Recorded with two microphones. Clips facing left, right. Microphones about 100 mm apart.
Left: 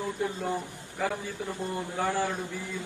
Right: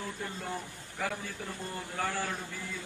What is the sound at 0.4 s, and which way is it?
A man's voice, 15° left (ahead or behind).